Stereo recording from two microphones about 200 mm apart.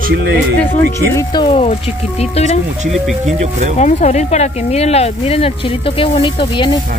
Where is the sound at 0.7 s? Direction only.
15° left (ahead or behind); by 2.6 s 35° left (ahead or behind).